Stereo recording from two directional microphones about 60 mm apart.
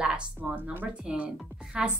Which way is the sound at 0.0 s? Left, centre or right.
Centre.